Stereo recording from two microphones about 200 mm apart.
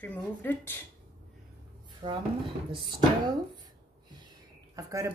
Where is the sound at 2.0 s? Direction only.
30° right (ahead or behind).